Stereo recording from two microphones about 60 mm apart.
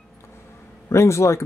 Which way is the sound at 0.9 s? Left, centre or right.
Left.